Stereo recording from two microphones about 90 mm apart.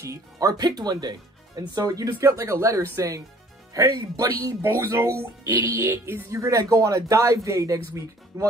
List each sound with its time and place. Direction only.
0.0 s speech: 35° right (ahead or behind)
2.0 s a man's voice: 30° right (ahead or behind)
5.5 s music: 25° right (ahead or behind)
6.3 s a man's voice: 35° right (ahead or behind)